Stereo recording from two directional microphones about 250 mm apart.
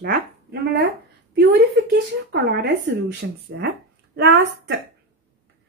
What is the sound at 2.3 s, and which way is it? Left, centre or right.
Speech, right.